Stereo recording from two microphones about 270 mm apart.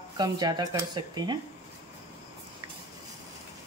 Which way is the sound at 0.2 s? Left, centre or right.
Centre.